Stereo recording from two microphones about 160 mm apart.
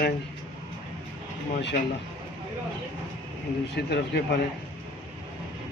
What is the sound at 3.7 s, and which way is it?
Speech, 90° left.